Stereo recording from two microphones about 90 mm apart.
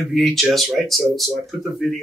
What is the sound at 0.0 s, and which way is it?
Speech, centre (ahead or behind).